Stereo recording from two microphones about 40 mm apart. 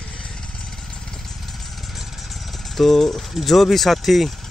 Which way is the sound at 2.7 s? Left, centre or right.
Centre.